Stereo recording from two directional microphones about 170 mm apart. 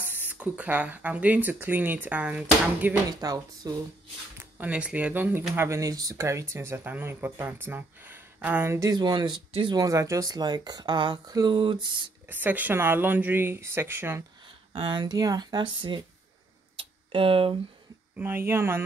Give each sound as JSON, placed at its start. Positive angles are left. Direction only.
{"t": 0.0, "sound": "speech", "side_deg": -10}
{"t": 3.1, "sound": "speech", "side_deg": -20}
{"t": 4.4, "sound": "speech", "side_deg": -10}
{"t": 12.3, "sound": "speech", "side_deg": -10}
{"t": 14.7, "sound": "speech", "side_deg": -30}
{"t": 16.7, "sound": "a sound", "side_deg": -30}
{"t": 18.1, "sound": "speech", "side_deg": -10}